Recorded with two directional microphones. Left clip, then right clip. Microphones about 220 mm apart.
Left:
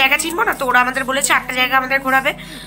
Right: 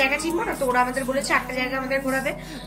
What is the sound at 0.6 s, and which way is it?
Speech, 40° left (ahead or behind).